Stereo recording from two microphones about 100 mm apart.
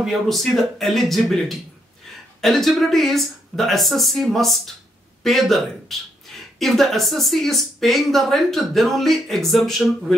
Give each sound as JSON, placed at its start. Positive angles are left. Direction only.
{"t": 0.0, "sound": "speech", "side_deg": 0}